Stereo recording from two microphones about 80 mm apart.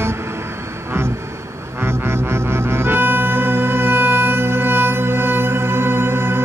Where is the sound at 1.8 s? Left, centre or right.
Right.